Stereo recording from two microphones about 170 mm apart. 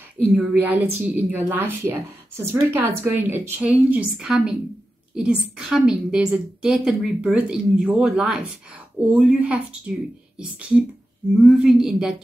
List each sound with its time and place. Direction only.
0.3 s a woman's voice: 10° right (ahead or behind)
11.4 s a woman's voice: 5° right (ahead or behind)